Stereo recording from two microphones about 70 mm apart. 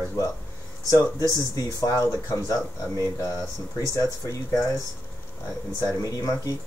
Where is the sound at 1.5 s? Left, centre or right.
Left.